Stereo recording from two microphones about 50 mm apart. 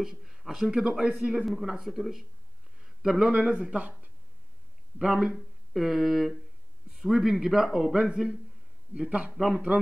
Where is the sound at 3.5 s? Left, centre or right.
Right.